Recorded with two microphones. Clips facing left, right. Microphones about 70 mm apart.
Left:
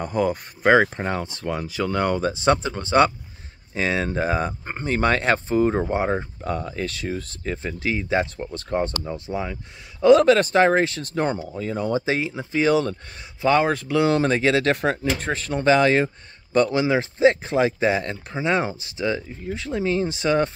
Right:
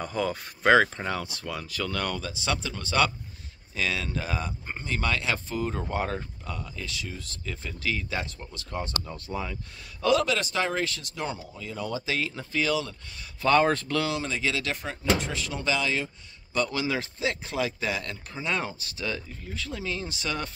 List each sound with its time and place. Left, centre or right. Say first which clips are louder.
0.1 s a man's voice: left 6 dB; centre; by 5.9 s left
5.9 s a man's voice: left 7 dB; left
6.4 s speech: left 10 dB; left
9.1 s a man's voice: left 6 dB; left
10.0 s speech: left 10 dB; left
12.3 s a man's voice: left 6 dB; centre
12.6 s speech: left 10 dB; left
13.4 s speech: left 3 dB; centre
13.7 s speech: left 2 dB; centre
14.0 s speech: left 10 dB; left
16.5 s a man's voice: left 9 dB; left